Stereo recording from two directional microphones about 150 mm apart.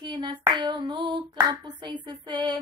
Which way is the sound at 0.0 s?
30° right (ahead or behind).